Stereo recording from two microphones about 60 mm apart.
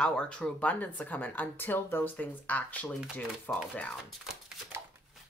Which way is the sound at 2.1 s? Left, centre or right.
Left.